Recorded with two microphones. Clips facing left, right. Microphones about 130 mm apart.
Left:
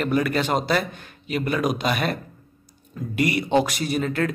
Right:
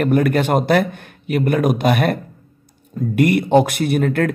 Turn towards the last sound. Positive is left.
turn(degrees=-55)  # may be behind; listen again after turning